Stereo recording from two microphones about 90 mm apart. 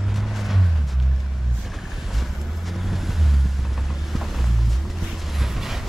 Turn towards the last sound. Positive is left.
turn(degrees=-5)  # may be behind; listen again after turning